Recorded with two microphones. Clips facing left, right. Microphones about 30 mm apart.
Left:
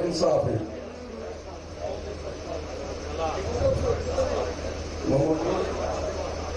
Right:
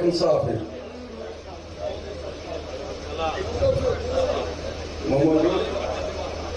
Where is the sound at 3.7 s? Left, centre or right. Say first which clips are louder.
Right 3 dB; right.